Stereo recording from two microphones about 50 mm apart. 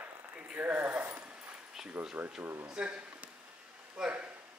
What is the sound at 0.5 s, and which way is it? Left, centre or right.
Speech, right.